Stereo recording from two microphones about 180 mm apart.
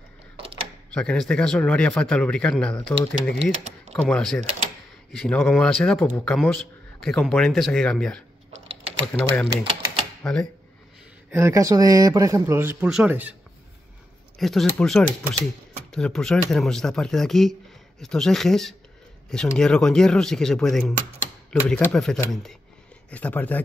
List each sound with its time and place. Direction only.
0.9 s speech: 5° left (ahead or behind)
11.3 s speech: 15° right (ahead or behind)
14.4 s speech: centre (ahead or behind)